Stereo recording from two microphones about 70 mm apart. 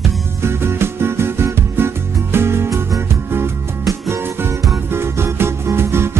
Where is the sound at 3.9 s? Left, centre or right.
Right.